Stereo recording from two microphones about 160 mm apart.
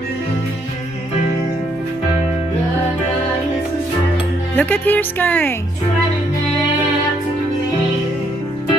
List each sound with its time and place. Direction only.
4.6 s speech: 10° left (ahead or behind)